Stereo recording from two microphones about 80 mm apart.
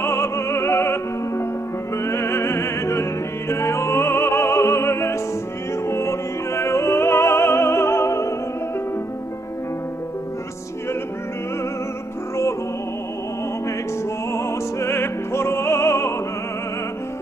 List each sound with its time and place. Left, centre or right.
0.0 s music: left
5.9 s opera: left
14.3 s music: left